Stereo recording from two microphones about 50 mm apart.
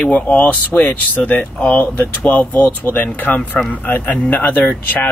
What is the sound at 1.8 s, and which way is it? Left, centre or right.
Speech, left.